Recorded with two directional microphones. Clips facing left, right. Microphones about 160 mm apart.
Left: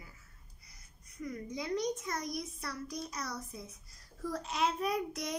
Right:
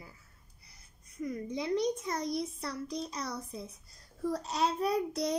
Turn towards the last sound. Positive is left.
turn(degrees=-30)  # may be behind; listen again after turning